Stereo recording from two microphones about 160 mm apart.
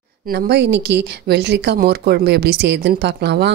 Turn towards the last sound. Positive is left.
turn(degrees=-90)